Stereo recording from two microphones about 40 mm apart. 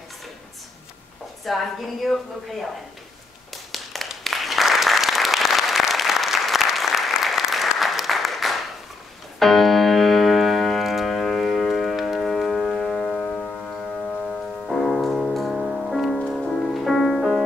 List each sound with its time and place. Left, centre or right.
1.4 s a woman's voice: centre
3.7 s applause: centre
9.4 s piano: centre
11.1 s music: centre
12.3 s music: centre
13.0 s music: left
14.7 s music: centre